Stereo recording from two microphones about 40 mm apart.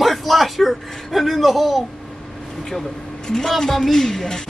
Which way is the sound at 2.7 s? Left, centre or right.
Centre.